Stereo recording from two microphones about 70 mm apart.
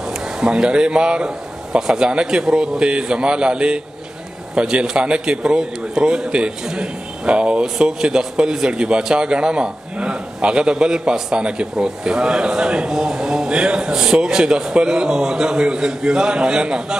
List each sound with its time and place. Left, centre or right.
0.1 s a man's voice: centre